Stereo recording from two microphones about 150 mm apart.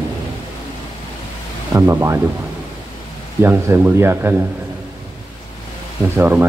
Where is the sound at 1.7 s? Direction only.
20° right (ahead or behind).